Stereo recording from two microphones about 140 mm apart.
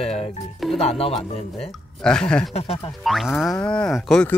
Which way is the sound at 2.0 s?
5° left (ahead or behind).